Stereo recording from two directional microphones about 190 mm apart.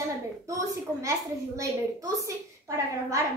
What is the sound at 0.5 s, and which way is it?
A woman's voice, 15° right (ahead or behind).